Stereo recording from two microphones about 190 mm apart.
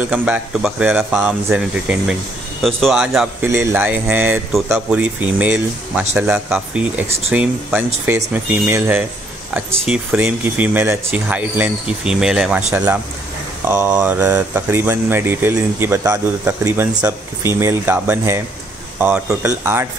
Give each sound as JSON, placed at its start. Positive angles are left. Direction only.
{"t": 0.1, "sound": "speech", "side_deg": -10}
{"t": 3.4, "sound": "speech", "side_deg": -10}